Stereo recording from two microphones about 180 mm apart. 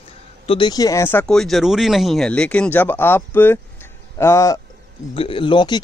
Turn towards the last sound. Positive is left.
turn(degrees=25)  # may be behind; listen again after turning